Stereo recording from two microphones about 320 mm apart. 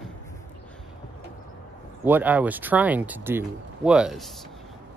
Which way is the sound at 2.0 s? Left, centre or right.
Centre.